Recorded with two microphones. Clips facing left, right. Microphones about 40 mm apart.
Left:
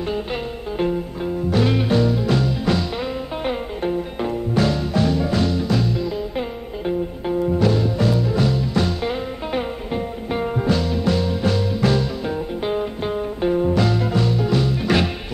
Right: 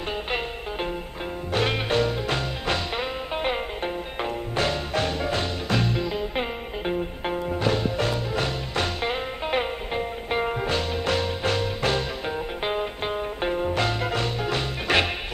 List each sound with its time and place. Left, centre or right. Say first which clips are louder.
1.2 s music: left 5 dB; right
7.7 s music: left 5 dB; right
13.7 s music: left 5 dB; right